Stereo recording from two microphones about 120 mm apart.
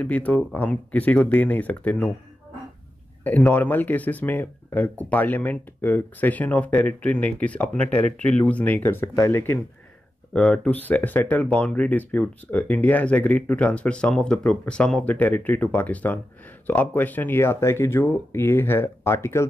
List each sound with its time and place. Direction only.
0.0 s speech: 10° left (ahead or behind)
3.3 s speech: 15° left (ahead or behind)